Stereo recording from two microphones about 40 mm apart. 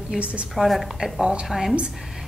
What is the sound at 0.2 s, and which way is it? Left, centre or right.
Speech, right.